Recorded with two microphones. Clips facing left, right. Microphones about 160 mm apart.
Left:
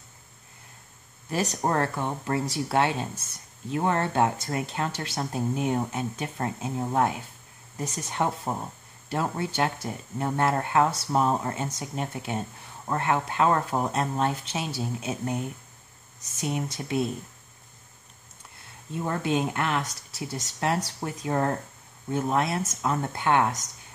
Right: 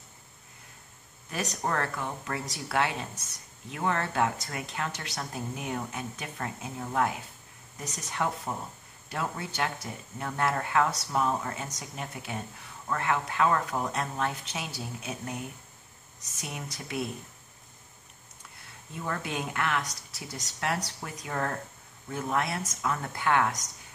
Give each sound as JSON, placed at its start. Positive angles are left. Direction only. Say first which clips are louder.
{"t": 1.3, "sound": "speech", "louder": "left 5 dB", "side_deg": 30}
{"t": 18.9, "sound": "speech", "louder": "left 7 dB", "side_deg": 30}